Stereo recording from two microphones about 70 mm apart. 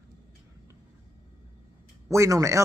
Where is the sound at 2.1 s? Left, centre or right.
Right.